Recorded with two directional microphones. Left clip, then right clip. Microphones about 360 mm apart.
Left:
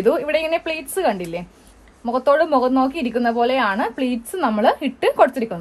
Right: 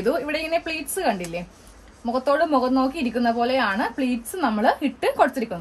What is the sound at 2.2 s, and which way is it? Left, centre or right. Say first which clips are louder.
Speech: left 4 dB; centre.